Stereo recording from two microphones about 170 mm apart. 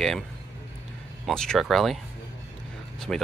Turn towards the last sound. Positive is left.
turn(degrees=0)  # may be behind; listen again after turning